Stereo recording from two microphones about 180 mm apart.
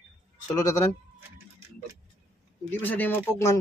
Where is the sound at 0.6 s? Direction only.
15° left (ahead or behind).